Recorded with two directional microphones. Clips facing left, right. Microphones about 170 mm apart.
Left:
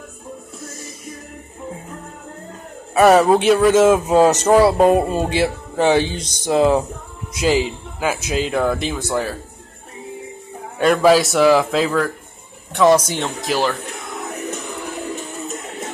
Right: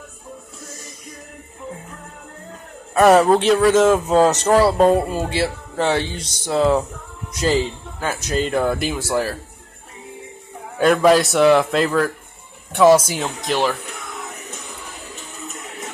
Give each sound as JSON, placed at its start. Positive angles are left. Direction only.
{"t": 2.9, "sound": "a man's voice", "side_deg": 5}
{"t": 7.3, "sound": "a man's voice", "side_deg": 5}
{"t": 10.8, "sound": "a man's voice", "side_deg": 0}